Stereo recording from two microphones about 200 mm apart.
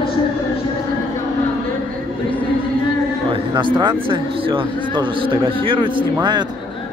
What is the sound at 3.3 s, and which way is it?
A man's voice, 25° right (ahead or behind).